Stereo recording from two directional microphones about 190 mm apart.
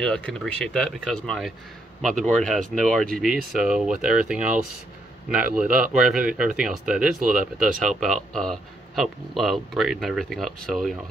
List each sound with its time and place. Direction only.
0.0 s speech: 5° left (ahead or behind)
5.9 s speech: 5° right (ahead or behind)
7.2 s speech: 40° right (ahead or behind)
7.5 s speech: centre (ahead or behind)